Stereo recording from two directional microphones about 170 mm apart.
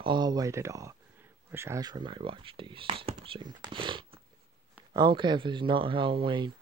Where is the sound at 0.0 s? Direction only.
25° right (ahead or behind).